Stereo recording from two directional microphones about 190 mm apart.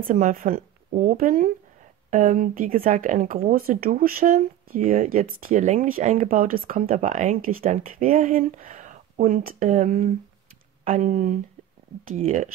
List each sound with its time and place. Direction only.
0.0 s speech: 45° right (ahead or behind)